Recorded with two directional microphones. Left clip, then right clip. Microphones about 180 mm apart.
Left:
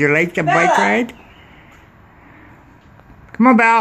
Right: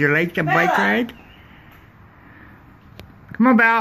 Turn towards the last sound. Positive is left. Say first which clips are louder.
# left 3 dB
turn(degrees=15)  # may be behind; listen again after turning